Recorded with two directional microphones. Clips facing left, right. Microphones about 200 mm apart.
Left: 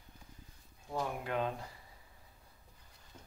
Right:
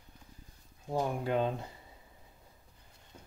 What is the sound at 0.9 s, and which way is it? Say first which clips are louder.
Speech: right 5 dB; 30° right (ahead or behind).